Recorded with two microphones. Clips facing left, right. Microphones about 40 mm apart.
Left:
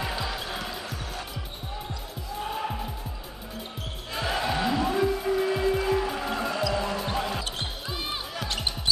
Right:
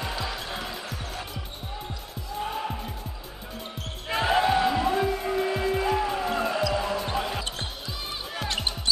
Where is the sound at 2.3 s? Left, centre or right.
Centre.